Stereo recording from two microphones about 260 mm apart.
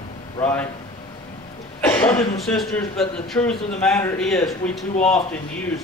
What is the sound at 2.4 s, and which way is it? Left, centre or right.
A man's voice, centre.